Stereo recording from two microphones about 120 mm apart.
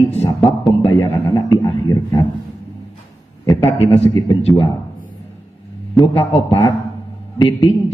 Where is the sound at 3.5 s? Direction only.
55° left (ahead or behind).